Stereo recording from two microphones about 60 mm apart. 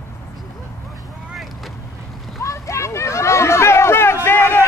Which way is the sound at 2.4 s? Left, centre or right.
Left.